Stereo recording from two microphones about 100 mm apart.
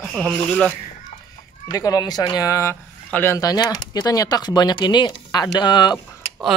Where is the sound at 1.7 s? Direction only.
40° left (ahead or behind).